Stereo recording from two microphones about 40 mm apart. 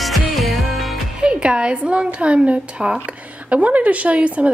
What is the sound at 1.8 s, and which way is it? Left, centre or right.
A woman's voice, right.